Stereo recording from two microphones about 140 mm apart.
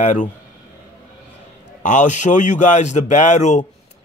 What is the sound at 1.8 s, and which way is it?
A man's voice, 65° left (ahead or behind).